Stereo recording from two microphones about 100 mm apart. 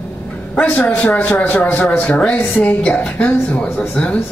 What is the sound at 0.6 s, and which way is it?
A woman's voice, 15° left (ahead or behind).